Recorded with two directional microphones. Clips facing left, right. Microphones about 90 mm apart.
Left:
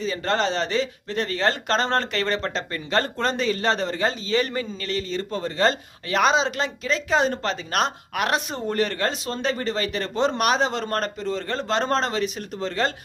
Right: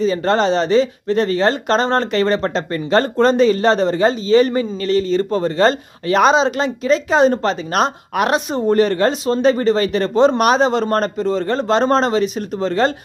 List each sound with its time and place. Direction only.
0.0 s speech: 35° right (ahead or behind)
9.7 s speech: 35° right (ahead or behind)